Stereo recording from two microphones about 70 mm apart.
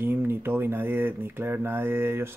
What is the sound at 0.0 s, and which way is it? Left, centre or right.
Speech, right.